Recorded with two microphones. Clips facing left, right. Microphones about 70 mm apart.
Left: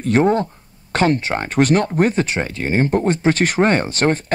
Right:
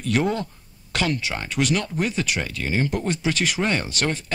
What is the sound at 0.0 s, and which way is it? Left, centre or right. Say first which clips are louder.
Speech: left 7 dB; left.